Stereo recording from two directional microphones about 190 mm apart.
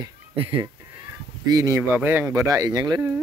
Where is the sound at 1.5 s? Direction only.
15° right (ahead or behind).